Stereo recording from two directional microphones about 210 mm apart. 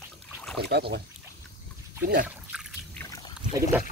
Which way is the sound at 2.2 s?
5° right (ahead or behind).